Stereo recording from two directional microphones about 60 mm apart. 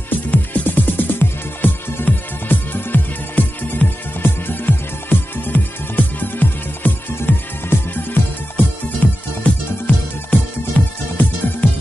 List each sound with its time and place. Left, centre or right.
0.3 s music: left